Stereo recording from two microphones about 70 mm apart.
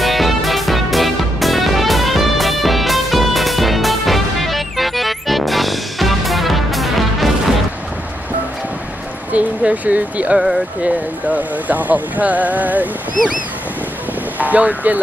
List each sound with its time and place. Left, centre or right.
0.0 s music: centre
9.3 s speech: right
14.4 s speech: right